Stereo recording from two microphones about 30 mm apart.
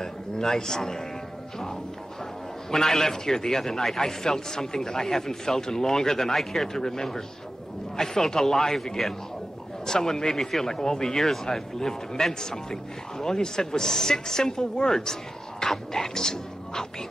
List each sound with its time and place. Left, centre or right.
0.0 s speech: centre
2.7 s a man's voice: centre